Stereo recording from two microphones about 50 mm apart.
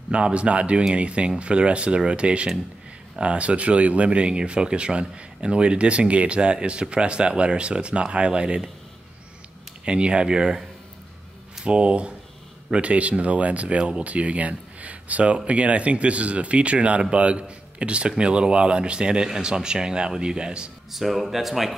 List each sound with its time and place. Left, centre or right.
0.1 s speech: right
9.8 s speech: right
11.6 s speech: right
20.9 s speech: centre